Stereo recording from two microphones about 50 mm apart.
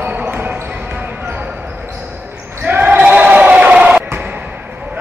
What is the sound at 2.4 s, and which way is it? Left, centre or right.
Basketball bounce, right.